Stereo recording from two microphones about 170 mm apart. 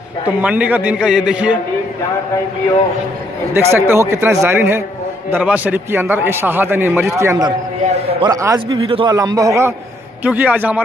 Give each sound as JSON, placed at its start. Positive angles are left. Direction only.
{"t": 0.4, "sound": "a man's voice", "side_deg": -10}
{"t": 3.5, "sound": "a man's voice", "side_deg": -15}
{"t": 7.9, "sound": "a man's voice", "side_deg": -35}
{"t": 8.3, "sound": "a man's voice", "side_deg": -20}
{"t": 8.8, "sound": "a man's voice", "side_deg": -35}
{"t": 9.1, "sound": "a man's voice", "side_deg": -20}